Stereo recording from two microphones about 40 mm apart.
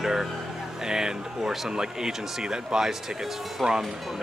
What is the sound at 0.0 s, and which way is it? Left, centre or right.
Speech, centre.